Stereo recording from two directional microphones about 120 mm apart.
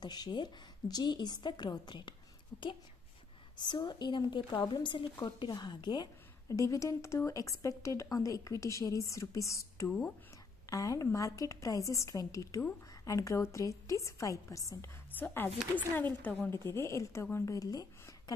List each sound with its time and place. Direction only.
0.0 s a woman's voice: 35° left (ahead or behind)
6.5 s a woman's voice: 25° left (ahead or behind)
9.8 s speech: 10° left (ahead or behind)
10.7 s a woman's voice: 30° left (ahead or behind)